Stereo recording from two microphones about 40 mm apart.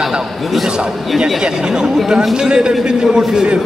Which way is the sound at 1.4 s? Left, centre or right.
Centre.